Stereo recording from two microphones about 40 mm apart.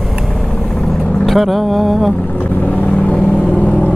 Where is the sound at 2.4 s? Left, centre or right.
Left.